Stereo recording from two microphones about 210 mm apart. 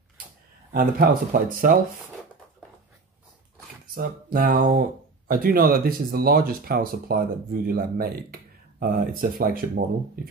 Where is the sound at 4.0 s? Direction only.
45° right (ahead or behind).